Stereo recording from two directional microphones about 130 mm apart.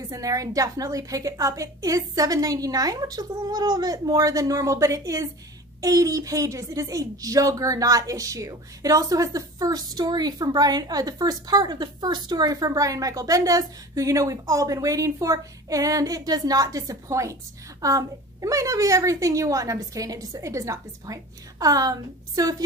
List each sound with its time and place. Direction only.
0.1 s a woman's voice: 25° right (ahead or behind)